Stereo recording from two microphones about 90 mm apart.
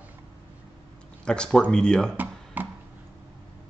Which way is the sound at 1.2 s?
10° left (ahead or behind).